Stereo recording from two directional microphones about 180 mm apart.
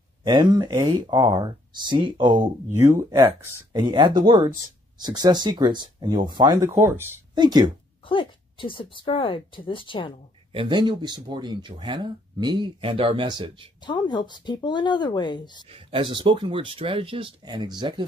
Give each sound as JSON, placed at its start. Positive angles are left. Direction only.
{"t": 0.2, "sound": "speech", "side_deg": -25}
{"t": 2.8, "sound": "speech", "side_deg": -15}
{"t": 3.1, "sound": "speech", "side_deg": -25}
{"t": 8.1, "sound": "speech", "side_deg": 30}
{"t": 10.5, "sound": "speech", "side_deg": -25}
{"t": 13.8, "sound": "speech", "side_deg": 25}
{"t": 15.7, "sound": "speech", "side_deg": -30}